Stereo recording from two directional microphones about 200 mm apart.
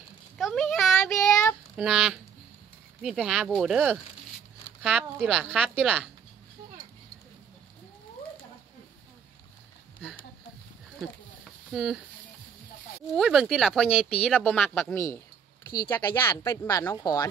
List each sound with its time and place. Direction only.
0.4 s a sound: centre (ahead or behind)
1.1 s child singing: 15° left (ahead or behind)
1.8 s a woman's voice: 5° right (ahead or behind)
11.7 s a woman's voice: 5° right (ahead or behind)
13.1 s a woman's voice: centre (ahead or behind); by 17.3 s 15° left (ahead or behind)